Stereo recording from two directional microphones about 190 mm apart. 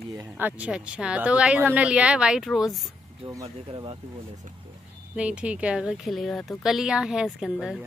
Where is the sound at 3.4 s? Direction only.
30° right (ahead or behind).